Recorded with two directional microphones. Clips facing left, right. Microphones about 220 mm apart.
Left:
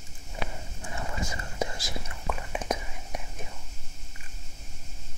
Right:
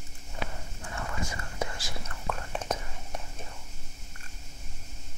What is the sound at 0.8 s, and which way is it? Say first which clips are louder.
Whispering: left 1 dB; 20° left (ahead or behind).